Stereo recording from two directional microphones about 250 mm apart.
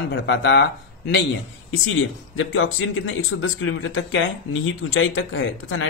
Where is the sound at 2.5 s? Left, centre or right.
Left.